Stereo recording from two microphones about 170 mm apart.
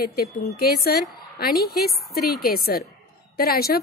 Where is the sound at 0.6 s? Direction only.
65° left (ahead or behind).